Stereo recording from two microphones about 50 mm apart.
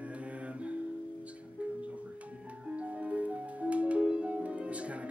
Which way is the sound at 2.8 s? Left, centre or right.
Right.